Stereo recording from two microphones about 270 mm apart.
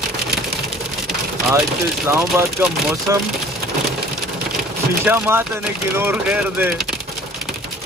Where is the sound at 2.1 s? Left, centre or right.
Centre.